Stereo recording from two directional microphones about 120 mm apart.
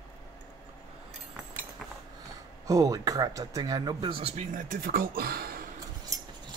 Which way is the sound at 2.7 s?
30° right (ahead or behind).